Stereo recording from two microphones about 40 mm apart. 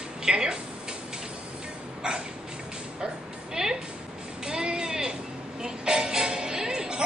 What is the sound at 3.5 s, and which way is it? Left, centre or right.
Music, centre.